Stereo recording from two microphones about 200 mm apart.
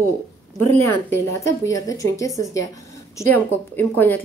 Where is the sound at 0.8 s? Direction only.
15° left (ahead or behind).